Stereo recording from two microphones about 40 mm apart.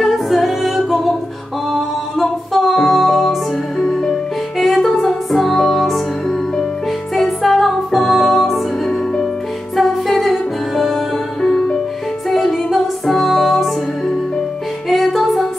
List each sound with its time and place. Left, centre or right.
0.0 s music: centre
3.8 s music: left
4.1 s music: centre
7.2 s music: centre
11.4 s music: centre
12.6 s music: centre
14.9 s music: centre